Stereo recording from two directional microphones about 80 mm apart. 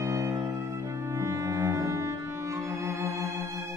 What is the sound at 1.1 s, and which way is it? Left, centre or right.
Cello, right.